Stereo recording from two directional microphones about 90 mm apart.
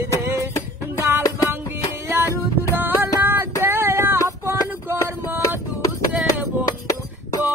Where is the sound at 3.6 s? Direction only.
25° right (ahead or behind).